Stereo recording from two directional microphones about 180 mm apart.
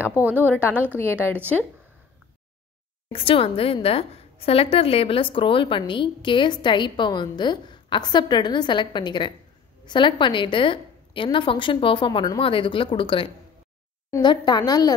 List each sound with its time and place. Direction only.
0.4 s a woman's voice: 10° left (ahead or behind)
0.7 s a woman's voice: 10° right (ahead or behind)
3.1 s a woman's voice: 30° left (ahead or behind)